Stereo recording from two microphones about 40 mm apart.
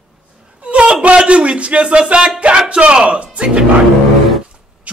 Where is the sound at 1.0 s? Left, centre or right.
Right.